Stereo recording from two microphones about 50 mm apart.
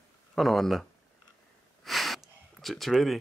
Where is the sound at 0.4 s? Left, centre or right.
Centre.